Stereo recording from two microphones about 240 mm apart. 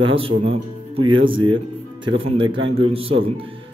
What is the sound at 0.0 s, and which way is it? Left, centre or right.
Speech, right.